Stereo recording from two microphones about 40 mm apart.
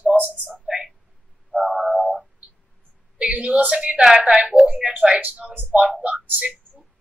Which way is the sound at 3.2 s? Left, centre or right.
Right.